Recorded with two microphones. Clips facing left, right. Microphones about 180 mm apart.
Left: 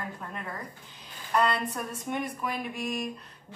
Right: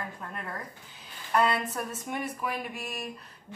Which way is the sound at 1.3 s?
5° right (ahead or behind).